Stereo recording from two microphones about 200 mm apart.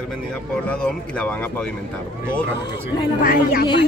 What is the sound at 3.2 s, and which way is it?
Speech, 45° left (ahead or behind).